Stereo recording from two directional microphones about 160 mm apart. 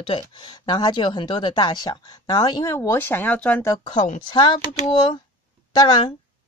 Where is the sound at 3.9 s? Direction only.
50° left (ahead or behind).